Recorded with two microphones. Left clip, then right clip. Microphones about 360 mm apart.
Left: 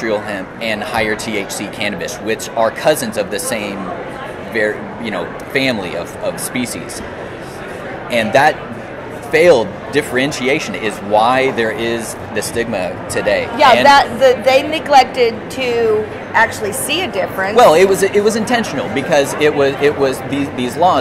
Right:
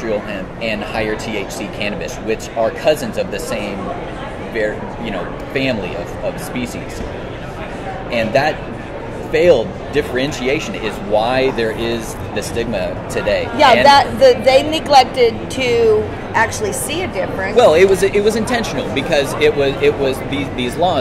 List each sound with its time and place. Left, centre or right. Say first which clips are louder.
0.0 s speech: left 2 dB; left
8.1 s speech: left 4 dB; left
13.8 s speech: even; centre
17.6 s speech: left 1 dB; left